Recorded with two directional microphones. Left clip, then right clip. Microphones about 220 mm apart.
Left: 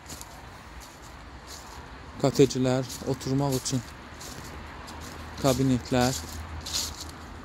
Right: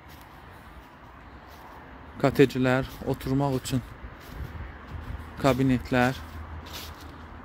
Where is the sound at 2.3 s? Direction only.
20° right (ahead or behind).